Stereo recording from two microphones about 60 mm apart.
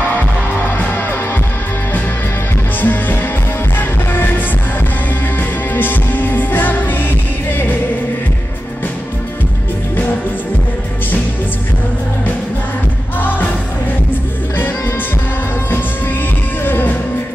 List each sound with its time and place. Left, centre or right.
2.8 s music: left
5.8 s music: left
16.6 s music: left